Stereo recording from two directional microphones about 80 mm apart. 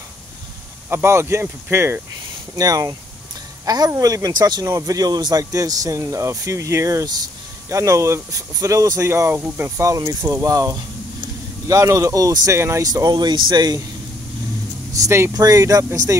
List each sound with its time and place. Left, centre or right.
0.8 s speech: right
2.5 s speech: right
4.6 s speech: right
12.5 s speech: right
12.8 s speech: right
15.0 s speech: right
15.3 s speech: right
15.8 s speech: right